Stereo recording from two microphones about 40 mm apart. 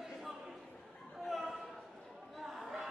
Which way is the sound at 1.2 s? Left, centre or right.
Centre.